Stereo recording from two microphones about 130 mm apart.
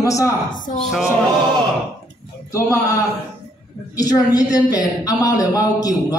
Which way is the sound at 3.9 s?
30° left (ahead or behind).